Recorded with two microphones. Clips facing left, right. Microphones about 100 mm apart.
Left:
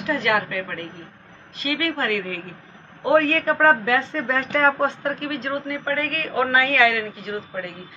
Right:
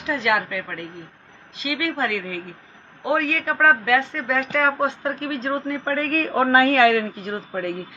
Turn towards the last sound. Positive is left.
turn(degrees=-45)  # may be behind; listen again after turning